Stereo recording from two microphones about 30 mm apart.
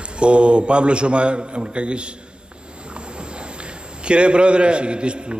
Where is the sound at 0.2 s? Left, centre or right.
Right.